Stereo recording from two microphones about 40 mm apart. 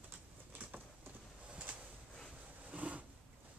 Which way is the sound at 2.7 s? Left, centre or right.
Right.